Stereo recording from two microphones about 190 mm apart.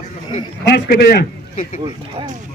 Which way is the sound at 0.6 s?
55° left (ahead or behind).